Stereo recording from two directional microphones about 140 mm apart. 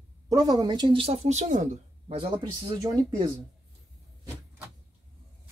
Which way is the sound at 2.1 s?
40° right (ahead or behind).